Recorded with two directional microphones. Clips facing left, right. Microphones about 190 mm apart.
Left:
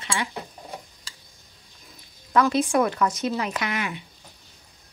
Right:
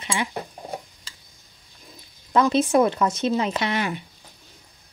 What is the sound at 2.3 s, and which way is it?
Speech, 25° right (ahead or behind).